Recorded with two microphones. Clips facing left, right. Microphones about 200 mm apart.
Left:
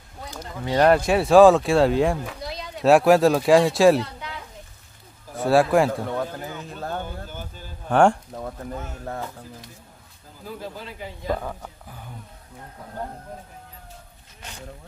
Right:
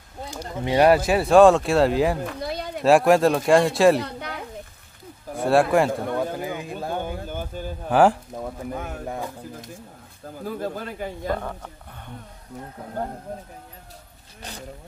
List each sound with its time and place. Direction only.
0.7 s speech: 10° right (ahead or behind)
2.4 s a sound: 55° right (ahead or behind)
2.8 s speech: centre (ahead or behind)
4.0 s children playing: 60° right (ahead or behind)
5.3 s speech: centre (ahead or behind)
6.1 s speech: 10° right (ahead or behind)
7.2 s speech: 50° right (ahead or behind)
7.9 s speech: 5° right (ahead or behind)
10.2 s speech: 50° right (ahead or behind)
11.2 s speech: 5° left (ahead or behind)